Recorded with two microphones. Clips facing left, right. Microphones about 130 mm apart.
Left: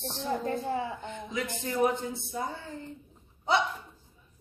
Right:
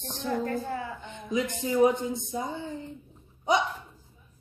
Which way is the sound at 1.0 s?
20° right (ahead or behind).